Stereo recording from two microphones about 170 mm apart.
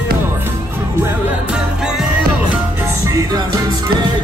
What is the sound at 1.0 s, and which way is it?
Music, 5° right (ahead or behind).